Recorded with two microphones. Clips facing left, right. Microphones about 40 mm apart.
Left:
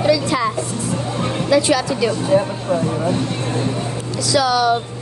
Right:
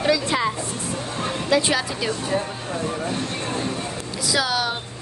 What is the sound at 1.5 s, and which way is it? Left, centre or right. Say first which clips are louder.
Speech: left 5 dB; right.